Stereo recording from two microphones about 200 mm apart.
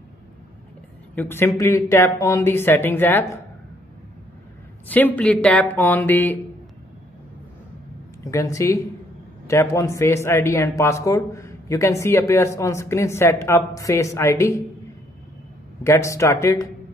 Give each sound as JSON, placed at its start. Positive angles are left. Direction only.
{"t": 1.1, "sound": "speech", "side_deg": 10}
{"t": 4.8, "sound": "speech", "side_deg": 10}
{"t": 8.2, "sound": "speech", "side_deg": 15}
{"t": 15.8, "sound": "speech", "side_deg": 15}